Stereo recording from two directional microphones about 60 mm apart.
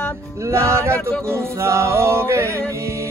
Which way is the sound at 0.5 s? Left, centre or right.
Right.